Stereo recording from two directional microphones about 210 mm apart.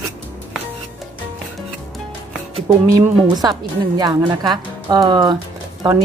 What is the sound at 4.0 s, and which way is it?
Speech, 20° right (ahead or behind).